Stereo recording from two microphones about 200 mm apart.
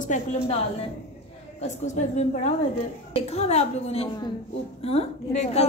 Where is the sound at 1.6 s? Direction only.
35° left (ahead or behind).